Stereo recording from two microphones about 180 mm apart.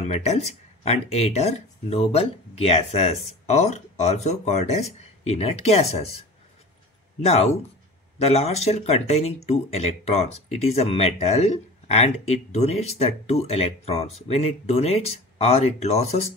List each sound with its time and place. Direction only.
0.1 s speech: 40° left (ahead or behind)
7.2 s speech: 35° left (ahead or behind)